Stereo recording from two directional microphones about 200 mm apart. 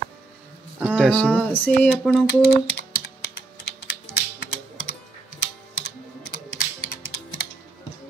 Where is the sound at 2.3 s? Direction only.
55° left (ahead or behind).